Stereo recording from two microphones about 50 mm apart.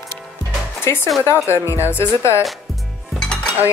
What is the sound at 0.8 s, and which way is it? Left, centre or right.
Speech, left.